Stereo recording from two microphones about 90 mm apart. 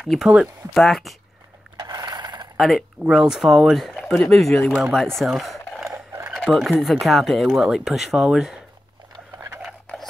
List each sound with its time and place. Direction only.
0.0 s speech: 5° right (ahead or behind)
1.9 s a sound: 50° right (ahead or behind)
2.5 s speech: 5° right (ahead or behind)